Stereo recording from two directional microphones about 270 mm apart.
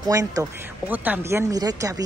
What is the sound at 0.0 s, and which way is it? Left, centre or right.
Speech, centre.